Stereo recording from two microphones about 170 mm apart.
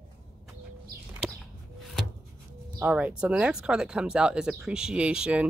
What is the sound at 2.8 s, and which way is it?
Speech, 10° right (ahead or behind).